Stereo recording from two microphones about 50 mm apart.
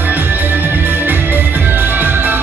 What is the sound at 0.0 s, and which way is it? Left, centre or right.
Music, right.